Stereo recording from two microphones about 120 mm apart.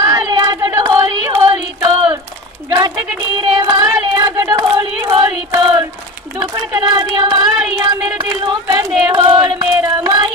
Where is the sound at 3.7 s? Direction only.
30° right (ahead or behind).